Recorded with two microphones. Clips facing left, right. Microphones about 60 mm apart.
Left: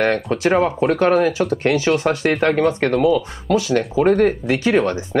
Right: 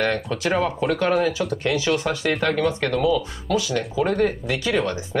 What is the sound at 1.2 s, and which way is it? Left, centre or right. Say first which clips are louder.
Speech: left 5 dB; left.